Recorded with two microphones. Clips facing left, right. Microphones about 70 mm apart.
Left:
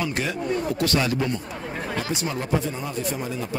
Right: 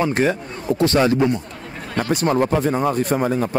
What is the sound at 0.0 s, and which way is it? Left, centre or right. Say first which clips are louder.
Speech: right 7 dB; right.